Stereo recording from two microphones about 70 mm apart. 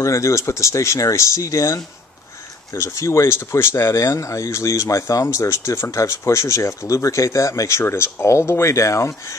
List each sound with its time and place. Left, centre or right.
0.0 s speech: left